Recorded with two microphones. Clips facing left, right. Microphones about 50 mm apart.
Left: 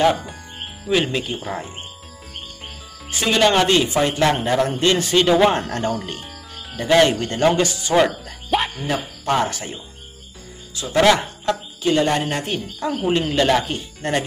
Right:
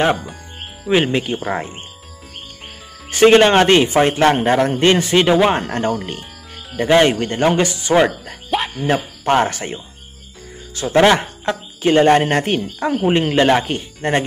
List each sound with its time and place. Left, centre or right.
0.8 s speech: right
3.1 s speech: right
7.1 s speech: right
8.5 s music: centre
8.9 s speech: right